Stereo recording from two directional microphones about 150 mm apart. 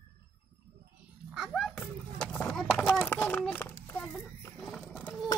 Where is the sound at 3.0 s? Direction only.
10° left (ahead or behind).